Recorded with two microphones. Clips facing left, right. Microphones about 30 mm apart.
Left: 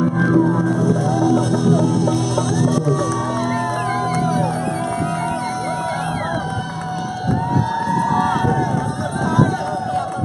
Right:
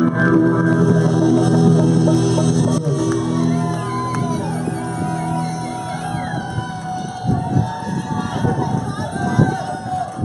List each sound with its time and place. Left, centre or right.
0.0 s music: centre
0.7 s music: centre
3.3 s music: centre